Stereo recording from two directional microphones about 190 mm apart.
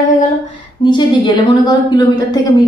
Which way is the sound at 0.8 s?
25° left (ahead or behind).